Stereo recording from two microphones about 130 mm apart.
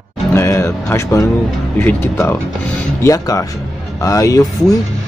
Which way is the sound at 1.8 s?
20° left (ahead or behind).